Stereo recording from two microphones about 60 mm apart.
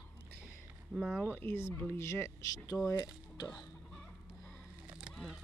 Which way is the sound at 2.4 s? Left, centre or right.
Left.